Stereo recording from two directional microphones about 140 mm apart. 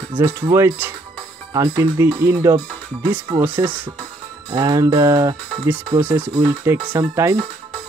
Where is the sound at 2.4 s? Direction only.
25° right (ahead or behind).